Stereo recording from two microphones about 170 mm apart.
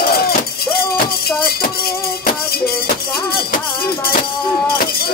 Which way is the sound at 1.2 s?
60° left (ahead or behind).